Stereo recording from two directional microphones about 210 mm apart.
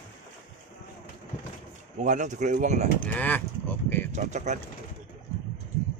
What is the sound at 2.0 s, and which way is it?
Speech, 35° right (ahead or behind).